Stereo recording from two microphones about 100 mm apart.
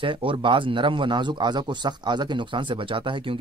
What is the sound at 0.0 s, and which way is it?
Speech, 60° right (ahead or behind).